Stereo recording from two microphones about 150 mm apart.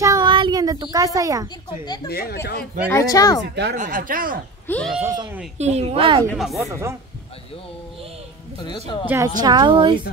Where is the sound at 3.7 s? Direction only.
60° right (ahead or behind).